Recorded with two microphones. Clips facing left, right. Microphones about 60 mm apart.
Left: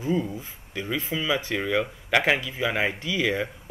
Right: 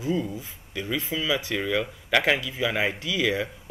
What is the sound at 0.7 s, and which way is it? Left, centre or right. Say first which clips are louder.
Speech: even; centre.